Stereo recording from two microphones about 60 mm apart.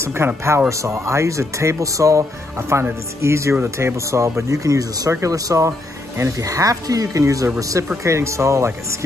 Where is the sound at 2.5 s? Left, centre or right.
Right.